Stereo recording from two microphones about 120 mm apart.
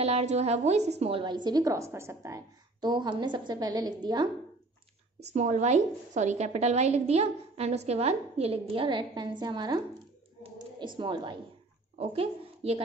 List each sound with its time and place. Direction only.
0.0 s a woman's voice: 65° right (ahead or behind)
1.2 s a woman's voice: 40° right (ahead or behind)
5.3 s a woman's voice: 80° right; by 9.8 s 35° right (ahead or behind)
10.8 s a woman's voice: 40° right (ahead or behind)
12.0 s a woman's voice: 55° right (ahead or behind)